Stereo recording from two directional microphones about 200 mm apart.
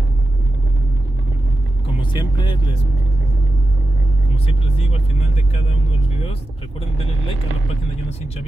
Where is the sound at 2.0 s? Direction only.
25° left (ahead or behind).